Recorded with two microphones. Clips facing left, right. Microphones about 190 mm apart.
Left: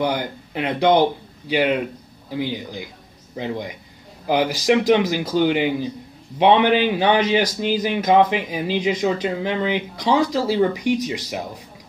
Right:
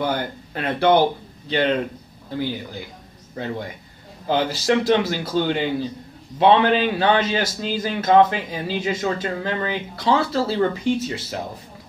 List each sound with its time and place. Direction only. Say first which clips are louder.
0.0 s a man's voice: left 1 dB; 15° left (ahead or behind)